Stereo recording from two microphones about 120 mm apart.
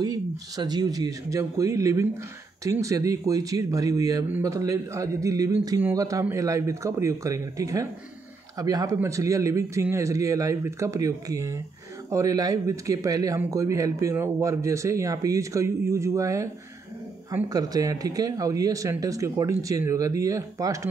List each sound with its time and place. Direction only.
0.0 s speech: 35° right (ahead or behind)
17.5 s speech: 30° right (ahead or behind)